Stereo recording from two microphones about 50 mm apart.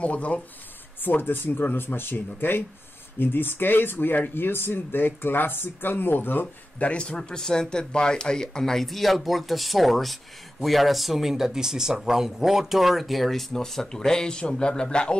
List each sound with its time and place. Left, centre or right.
0.0 s speech: left
1.0 s speech: left
6.4 s speech: left